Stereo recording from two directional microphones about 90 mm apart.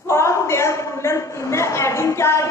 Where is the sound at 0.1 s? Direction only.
30° left (ahead or behind).